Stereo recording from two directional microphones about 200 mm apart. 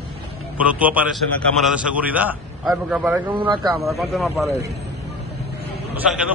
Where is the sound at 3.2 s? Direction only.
25° right (ahead or behind).